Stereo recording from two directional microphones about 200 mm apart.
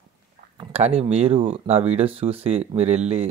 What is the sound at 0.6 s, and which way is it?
Speech, 30° right (ahead or behind).